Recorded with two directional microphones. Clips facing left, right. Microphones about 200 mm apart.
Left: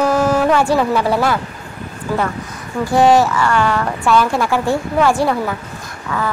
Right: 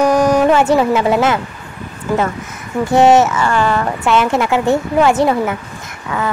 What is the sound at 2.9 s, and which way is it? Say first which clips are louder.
A woman's voice: right 2 dB; 25° right (ahead or behind).